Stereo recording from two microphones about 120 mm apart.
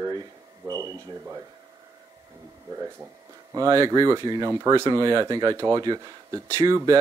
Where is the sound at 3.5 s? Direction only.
30° right (ahead or behind).